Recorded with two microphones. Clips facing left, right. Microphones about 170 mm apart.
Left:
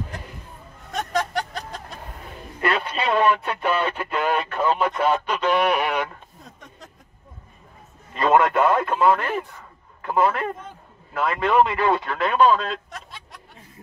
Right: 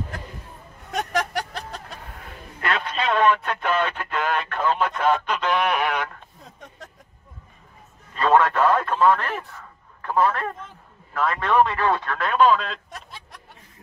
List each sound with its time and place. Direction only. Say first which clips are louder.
2.6 s speech: left 2 dB; 5° left (ahead or behind)
8.2 s a man's voice: left 1 dB; 10° left (ahead or behind)